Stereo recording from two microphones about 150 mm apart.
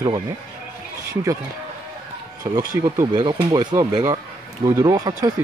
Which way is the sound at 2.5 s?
25° right (ahead or behind).